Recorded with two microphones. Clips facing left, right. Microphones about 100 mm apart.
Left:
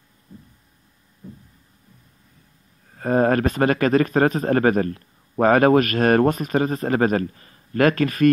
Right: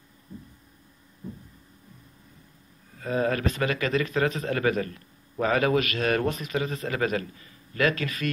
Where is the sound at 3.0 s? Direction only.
50° left (ahead or behind).